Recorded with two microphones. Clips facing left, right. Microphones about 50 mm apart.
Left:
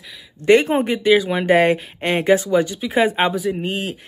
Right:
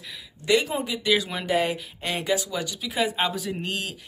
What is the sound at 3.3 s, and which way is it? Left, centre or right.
Speech, centre.